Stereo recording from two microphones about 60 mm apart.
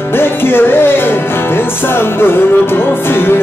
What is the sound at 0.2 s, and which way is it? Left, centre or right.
Music, left.